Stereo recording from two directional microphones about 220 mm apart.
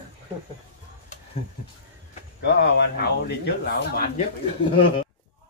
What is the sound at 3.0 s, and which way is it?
Speech, 45° left (ahead or behind).